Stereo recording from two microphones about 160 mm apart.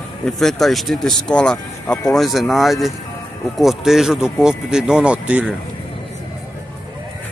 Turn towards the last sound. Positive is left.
turn(degrees=-10)  # may be behind; listen again after turning